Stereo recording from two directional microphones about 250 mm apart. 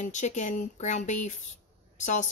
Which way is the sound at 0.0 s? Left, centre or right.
Left.